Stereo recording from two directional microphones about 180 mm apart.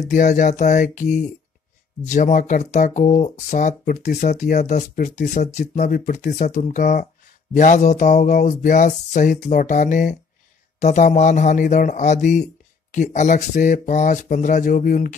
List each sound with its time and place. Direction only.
0.0 s a man's voice: 45° left (ahead or behind)